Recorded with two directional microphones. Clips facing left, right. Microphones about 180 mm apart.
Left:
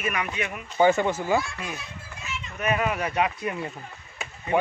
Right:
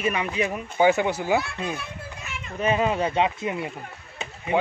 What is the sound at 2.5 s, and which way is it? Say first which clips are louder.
Speech: right 3 dB; 25° right (ahead or behind).